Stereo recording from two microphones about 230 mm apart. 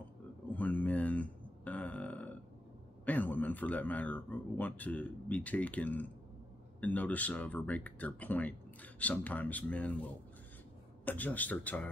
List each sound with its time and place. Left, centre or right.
0.5 s grunt: centre
3.1 s a man's voice: centre